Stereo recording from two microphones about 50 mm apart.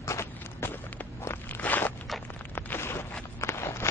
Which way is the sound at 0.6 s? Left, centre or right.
Left.